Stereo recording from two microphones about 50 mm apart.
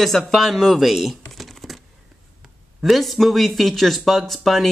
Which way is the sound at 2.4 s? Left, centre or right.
Centre.